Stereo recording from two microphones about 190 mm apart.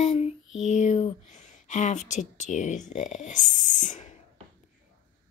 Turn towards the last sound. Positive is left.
turn(degrees=40)  # may be behind; listen again after turning